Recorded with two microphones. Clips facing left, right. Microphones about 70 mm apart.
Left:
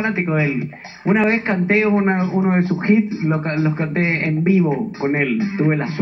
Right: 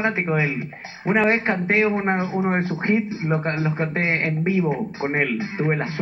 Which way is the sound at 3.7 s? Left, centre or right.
Right.